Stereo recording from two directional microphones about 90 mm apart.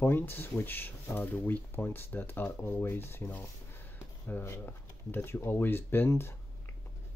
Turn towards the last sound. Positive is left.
turn(degrees=25)  # may be behind; listen again after turning